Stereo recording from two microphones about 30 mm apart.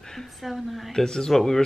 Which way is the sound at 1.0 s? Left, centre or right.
Centre.